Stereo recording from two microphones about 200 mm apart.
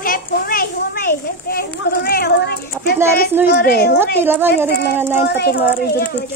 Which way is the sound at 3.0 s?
10° right (ahead or behind).